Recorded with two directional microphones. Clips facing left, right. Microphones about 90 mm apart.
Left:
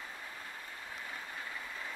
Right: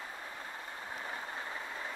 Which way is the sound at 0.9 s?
30° right (ahead or behind).